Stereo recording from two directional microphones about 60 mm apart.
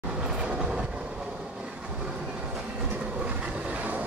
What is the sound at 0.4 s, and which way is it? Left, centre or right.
Train, centre.